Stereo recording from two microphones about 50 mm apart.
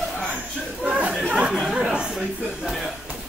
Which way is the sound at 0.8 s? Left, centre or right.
Right.